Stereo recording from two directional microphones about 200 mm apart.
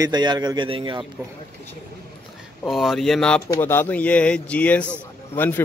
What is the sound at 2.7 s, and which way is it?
Speech, centre (ahead or behind).